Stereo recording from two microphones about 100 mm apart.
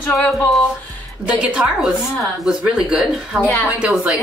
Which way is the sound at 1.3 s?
10° right (ahead or behind).